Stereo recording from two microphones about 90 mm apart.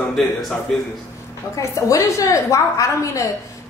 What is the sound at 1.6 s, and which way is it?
Speech, 35° left (ahead or behind).